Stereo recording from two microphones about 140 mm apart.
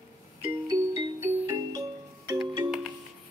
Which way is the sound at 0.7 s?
20° right (ahead or behind).